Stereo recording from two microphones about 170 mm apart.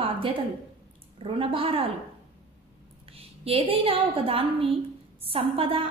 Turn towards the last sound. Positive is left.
turn(degrees=-35)  # may be behind; listen again after turning